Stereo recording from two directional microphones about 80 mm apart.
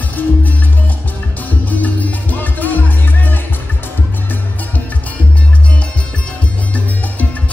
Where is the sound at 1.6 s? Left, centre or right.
Left.